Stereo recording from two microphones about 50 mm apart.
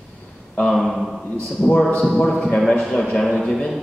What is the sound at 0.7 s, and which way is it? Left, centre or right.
Speech, centre.